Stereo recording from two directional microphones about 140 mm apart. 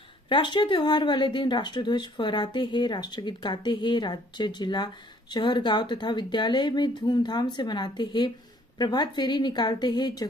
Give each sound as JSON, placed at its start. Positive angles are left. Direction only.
{"t": 0.3, "sound": "speech", "side_deg": 35}